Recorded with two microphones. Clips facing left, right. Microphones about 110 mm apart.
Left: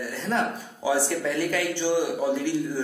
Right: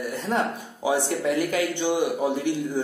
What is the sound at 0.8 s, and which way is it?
Speech, 20° right (ahead or behind).